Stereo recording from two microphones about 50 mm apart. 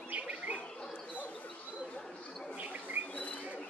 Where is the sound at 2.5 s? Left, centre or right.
Right.